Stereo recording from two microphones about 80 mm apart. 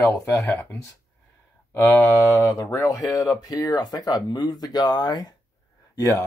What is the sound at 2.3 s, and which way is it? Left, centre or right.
Speech, left.